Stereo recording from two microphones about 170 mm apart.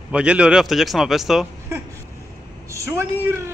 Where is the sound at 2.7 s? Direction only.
15° right (ahead or behind).